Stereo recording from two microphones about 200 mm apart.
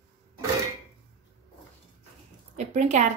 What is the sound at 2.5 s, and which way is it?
Speech, 35° right (ahead or behind).